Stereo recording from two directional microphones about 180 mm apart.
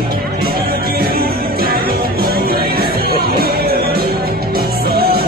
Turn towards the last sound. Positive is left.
turn(degrees=-60)  # may be behind; listen again after turning